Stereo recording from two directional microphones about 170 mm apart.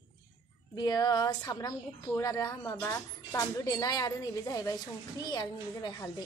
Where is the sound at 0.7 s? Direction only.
20° left (ahead or behind).